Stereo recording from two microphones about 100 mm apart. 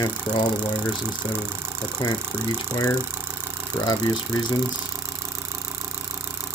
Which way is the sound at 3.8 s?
45° left (ahead or behind).